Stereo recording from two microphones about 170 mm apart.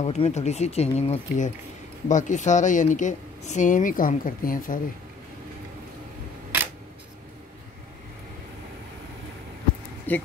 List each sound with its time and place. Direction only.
0.0 s speech: 40° left (ahead or behind)
10.1 s speech: 10° left (ahead or behind)